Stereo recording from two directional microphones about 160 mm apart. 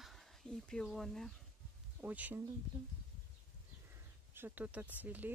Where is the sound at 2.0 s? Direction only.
10° right (ahead or behind).